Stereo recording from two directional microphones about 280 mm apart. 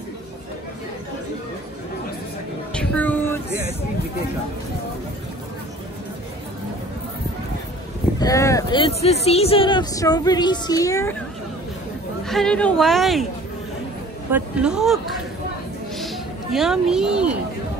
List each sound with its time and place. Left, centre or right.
2.7 s a sound: centre
8.2 s speech: centre
12.3 s a woman's voice: centre
14.3 s a woman's voice: centre
16.5 s a woman's voice: centre